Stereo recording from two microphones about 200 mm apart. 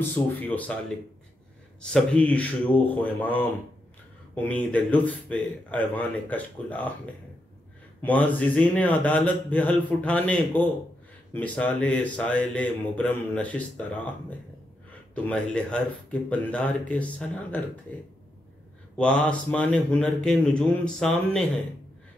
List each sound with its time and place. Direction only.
0.1 s a man's voice: 10° left (ahead or behind)
1.9 s a man's voice: 5° left (ahead or behind)
8.0 s a man's voice: 10° left (ahead or behind)
15.1 s a man's voice: 5° left (ahead or behind)
18.9 s a man's voice: 5° left (ahead or behind)